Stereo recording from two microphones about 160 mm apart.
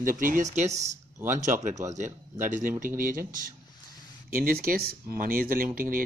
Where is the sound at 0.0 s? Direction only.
60° right (ahead or behind).